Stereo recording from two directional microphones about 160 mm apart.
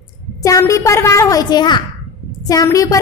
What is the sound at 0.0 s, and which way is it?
A woman's voice, 20° left (ahead or behind).